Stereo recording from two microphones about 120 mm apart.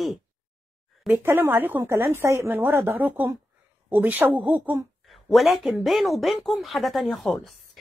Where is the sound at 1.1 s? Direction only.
15° right (ahead or behind).